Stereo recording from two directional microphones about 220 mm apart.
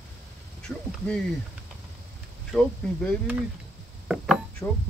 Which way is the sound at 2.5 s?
Centre (ahead or behind).